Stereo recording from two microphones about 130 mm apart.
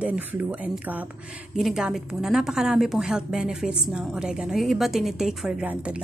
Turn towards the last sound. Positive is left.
turn(degrees=-10)  # may be behind; listen again after turning